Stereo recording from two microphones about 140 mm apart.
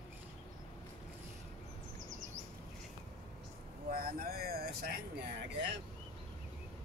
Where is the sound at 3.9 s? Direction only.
90° right.